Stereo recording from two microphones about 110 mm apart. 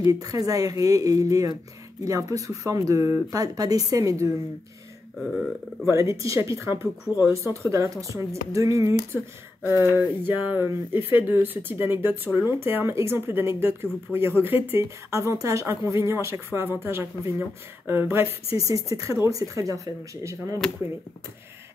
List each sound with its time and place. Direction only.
0.0 s speech: 30° right (ahead or behind)
5.9 s speech: 25° right (ahead or behind)